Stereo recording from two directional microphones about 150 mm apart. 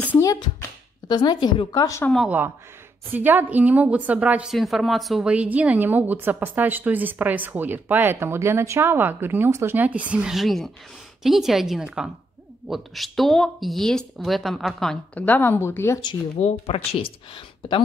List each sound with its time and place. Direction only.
0.0 s a sound: 10° left (ahead or behind)
0.3 s speech: 25° left (ahead or behind)
2.2 s a woman's voice: 10° right (ahead or behind); by 16.0 s 15° left (ahead or behind)
16.3 s speech: 45° left (ahead or behind)